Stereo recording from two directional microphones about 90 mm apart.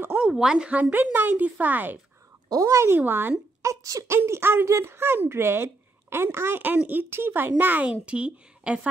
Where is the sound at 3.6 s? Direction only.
35° right (ahead or behind).